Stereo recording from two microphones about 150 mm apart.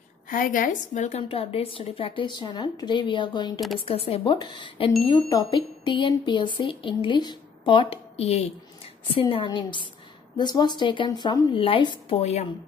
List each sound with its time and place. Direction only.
0.3 s a woman's voice: 65° left (ahead or behind)
1.3 s speech: 40° left (ahead or behind)
3.8 s speech: 40° left (ahead or behind)
12.2 s a woman's voice: 45° left (ahead or behind)